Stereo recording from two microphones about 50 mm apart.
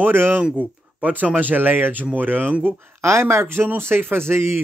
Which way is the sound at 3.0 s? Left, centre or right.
Right.